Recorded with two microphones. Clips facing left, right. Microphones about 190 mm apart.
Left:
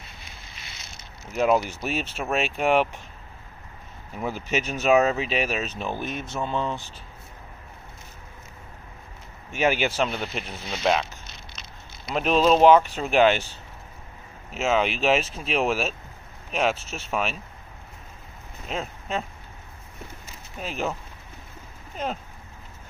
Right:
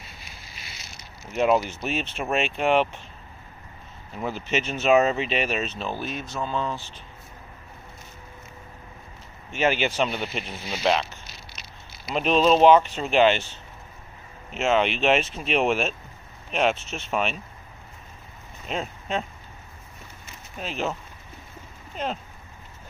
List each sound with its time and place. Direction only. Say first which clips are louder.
1.3 s speech: even; centre (ahead or behind)
4.1 s speech: even; 10° left (ahead or behind)
9.5 s speech: even; 10° left (ahead or behind)
10.0 s speech: right 1 dB; 5° right (ahead or behind)
12.2 s speech: even; 5° left (ahead or behind)
18.7 s speech: right 1 dB; 5° left (ahead or behind)
20.5 s speech: even; 10° left (ahead or behind)
21.9 s speech: even; 10° left (ahead or behind)